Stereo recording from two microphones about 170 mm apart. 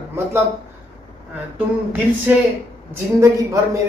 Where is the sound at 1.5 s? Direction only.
10° right (ahead or behind).